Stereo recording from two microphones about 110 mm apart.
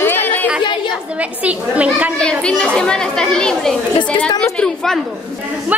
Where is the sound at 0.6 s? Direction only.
45° left (ahead or behind).